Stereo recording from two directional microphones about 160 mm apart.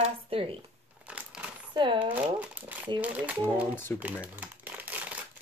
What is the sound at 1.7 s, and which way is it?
Speech, 30° right (ahead or behind).